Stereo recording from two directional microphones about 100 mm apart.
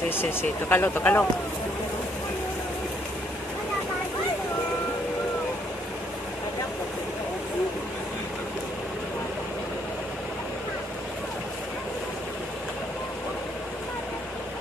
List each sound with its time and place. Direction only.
0.1 s speech: 20° left (ahead or behind)